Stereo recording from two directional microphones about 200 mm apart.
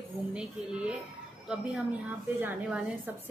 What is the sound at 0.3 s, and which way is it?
Speech, 5° right (ahead or behind).